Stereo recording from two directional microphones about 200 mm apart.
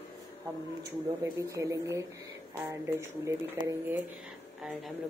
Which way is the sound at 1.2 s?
15° right (ahead or behind).